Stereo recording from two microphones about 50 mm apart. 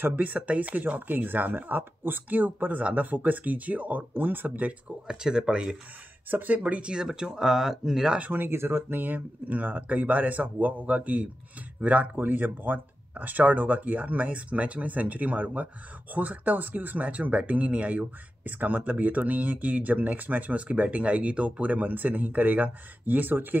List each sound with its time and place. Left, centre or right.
0.0 s speech: right
5.0 s speech: centre
6.3 s speech: right; by 8.2 s centre
8.2 s speech: right